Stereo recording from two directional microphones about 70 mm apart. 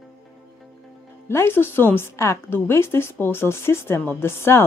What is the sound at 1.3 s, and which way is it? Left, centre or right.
Speech, left.